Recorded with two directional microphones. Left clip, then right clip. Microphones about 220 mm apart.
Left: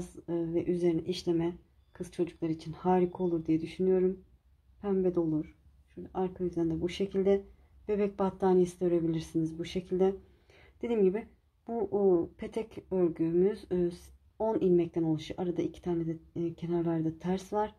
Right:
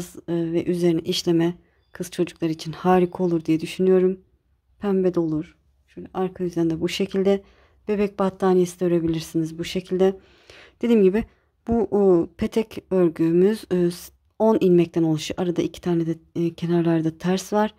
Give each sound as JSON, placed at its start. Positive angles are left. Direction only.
{"t": 0.0, "sound": "speech", "side_deg": -35}